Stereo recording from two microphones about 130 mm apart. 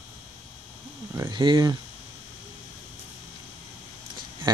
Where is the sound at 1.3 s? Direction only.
35° right (ahead or behind).